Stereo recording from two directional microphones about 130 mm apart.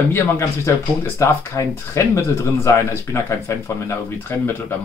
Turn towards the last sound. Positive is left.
turn(degrees=15)  # may be behind; listen again after turning